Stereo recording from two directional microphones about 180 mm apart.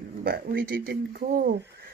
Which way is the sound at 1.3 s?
50° right (ahead or behind).